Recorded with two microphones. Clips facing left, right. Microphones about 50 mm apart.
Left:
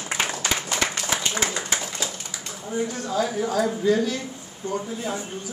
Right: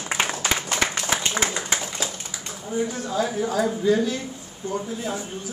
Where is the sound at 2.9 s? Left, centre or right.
Centre.